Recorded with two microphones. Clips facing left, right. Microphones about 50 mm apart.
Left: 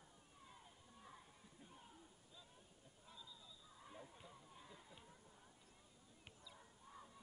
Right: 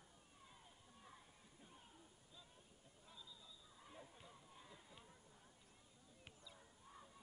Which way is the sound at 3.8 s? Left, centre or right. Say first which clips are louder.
Left 2 dB; centre.